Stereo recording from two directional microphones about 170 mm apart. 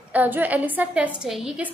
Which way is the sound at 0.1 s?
10° right (ahead or behind).